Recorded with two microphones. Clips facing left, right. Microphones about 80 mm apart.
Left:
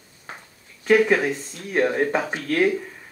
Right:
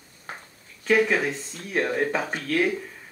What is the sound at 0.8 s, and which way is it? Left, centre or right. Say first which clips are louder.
Speech: left 4 dB; centre.